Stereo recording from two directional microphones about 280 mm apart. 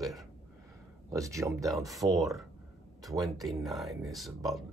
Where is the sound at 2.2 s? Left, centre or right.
Centre.